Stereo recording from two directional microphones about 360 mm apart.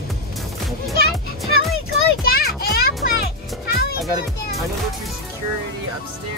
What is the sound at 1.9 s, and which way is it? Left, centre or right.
Children playing, left.